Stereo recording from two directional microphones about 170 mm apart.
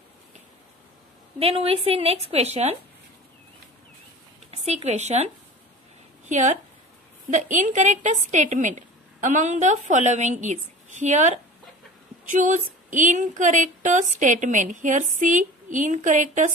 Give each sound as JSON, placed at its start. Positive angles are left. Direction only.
{"t": 1.4, "sound": "a woman's voice", "side_deg": -35}
{"t": 4.5, "sound": "a woman's voice", "side_deg": -40}